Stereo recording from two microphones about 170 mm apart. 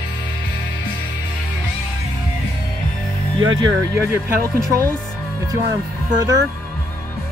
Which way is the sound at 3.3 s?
25° right (ahead or behind).